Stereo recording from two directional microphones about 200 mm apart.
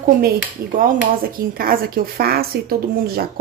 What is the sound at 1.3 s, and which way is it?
Speech, 45° right (ahead or behind).